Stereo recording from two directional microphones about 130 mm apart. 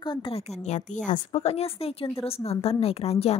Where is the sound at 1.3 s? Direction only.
50° left (ahead or behind).